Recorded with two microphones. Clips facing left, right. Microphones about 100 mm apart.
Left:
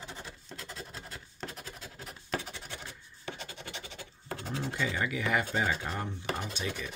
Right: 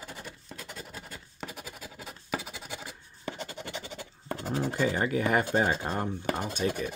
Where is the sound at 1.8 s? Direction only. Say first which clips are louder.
Right 2 dB; 90° right.